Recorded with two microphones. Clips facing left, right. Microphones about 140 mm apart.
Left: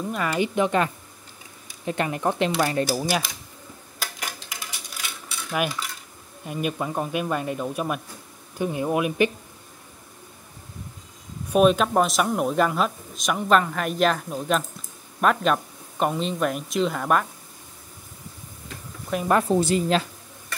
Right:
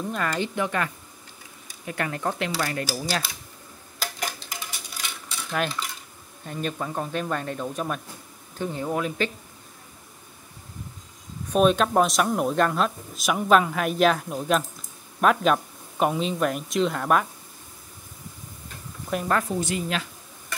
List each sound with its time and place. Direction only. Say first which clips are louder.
0.0 s speech: left 2 dB; 5° left (ahead or behind); by 3.2 s 20° left (ahead or behind)
5.5 s speech: left 1 dB; 10° left (ahead or behind)
11.4 s speech: left 2 dB; 5° left (ahead or behind)
19.1 s speech: left 1 dB; centre (ahead or behind)
19.4 s a woman's voice: left 6 dB; 30° left (ahead or behind)